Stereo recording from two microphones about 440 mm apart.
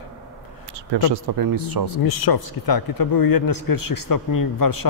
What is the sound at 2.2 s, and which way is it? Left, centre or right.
Speech, left.